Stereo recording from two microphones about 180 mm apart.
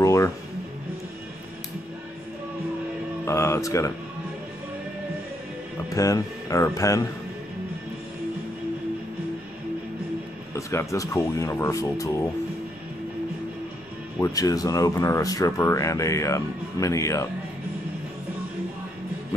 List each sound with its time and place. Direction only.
0.0 s music: 15° left (ahead or behind)
3.3 s speech: 15° left (ahead or behind)
5.9 s speech: 20° left (ahead or behind)
10.5 s speech: 15° left (ahead or behind)
14.2 s speech: 20° left (ahead or behind)